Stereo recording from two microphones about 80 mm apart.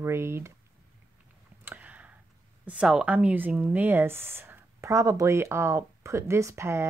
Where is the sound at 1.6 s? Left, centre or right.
Centre.